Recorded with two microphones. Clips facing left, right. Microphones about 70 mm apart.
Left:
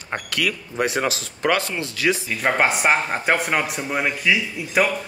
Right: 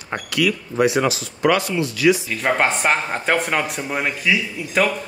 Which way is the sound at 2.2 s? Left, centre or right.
Centre.